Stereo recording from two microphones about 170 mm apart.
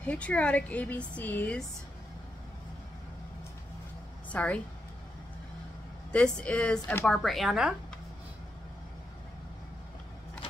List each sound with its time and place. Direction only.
0.0 s speech: 5° left (ahead or behind)
4.3 s a woman's voice: 10° left (ahead or behind)
6.1 s speech: 5° left (ahead or behind)